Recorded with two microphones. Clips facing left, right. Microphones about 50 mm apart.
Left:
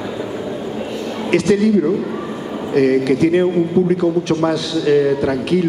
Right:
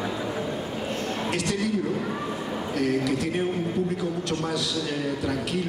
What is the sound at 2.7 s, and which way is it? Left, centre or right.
A man's voice, left.